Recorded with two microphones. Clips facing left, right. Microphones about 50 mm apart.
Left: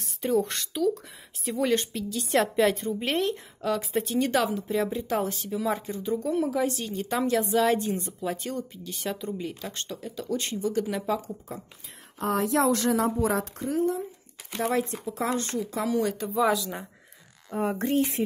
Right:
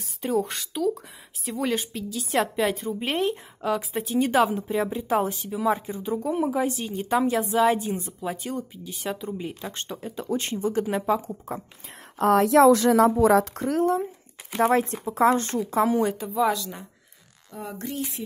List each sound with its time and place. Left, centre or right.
0.0 s speech: centre
4.3 s speech: centre
12.2 s speech: right
13.4 s speech: right
14.6 s speech: right
16.0 s speech: right
16.3 s speech: centre
17.5 s speech: left